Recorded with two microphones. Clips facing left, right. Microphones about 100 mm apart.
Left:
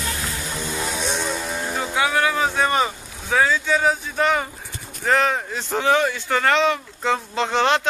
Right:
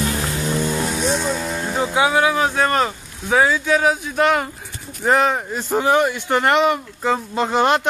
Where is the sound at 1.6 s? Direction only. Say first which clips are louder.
Right 4 dB; 20° right (ahead or behind).